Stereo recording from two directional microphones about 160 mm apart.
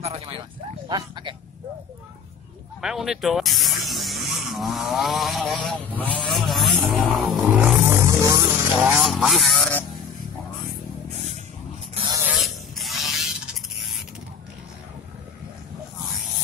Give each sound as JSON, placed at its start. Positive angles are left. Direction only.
{"t": 0.0, "sound": "a sound", "side_deg": -40}
{"t": 0.9, "sound": "speech", "side_deg": -30}
{"t": 2.8, "sound": "speech", "side_deg": -5}
{"t": 7.2, "sound": "vehicle", "side_deg": -10}
{"t": 8.8, "sound": "speech", "side_deg": 0}
{"t": 12.3, "sound": "electric shaver", "side_deg": 0}